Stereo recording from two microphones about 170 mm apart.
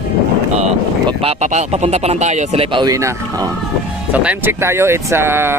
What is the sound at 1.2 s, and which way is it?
Speech, 40° right (ahead or behind).